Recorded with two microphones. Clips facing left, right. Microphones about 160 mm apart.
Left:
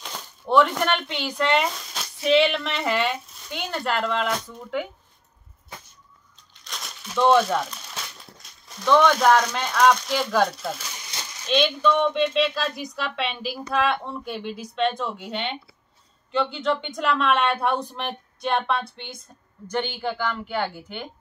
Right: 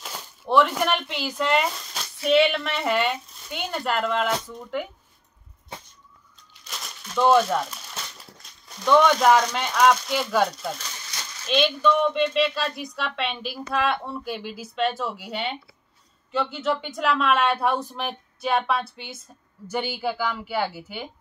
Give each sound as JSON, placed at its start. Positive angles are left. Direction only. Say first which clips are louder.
{"t": 0.0, "sound": "a woman's voice", "louder": "left 1 dB", "side_deg": -5}
{"t": 6.6, "sound": "speech", "louder": "left 1 dB", "side_deg": 0}
{"t": 11.1, "sound": "coin", "louder": "left 2 dB", "side_deg": 25}
{"t": 11.4, "sound": "a woman's voice", "louder": "even", "side_deg": 0}